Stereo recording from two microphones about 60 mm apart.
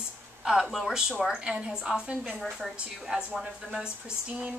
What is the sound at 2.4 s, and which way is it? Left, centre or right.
Speech, centre.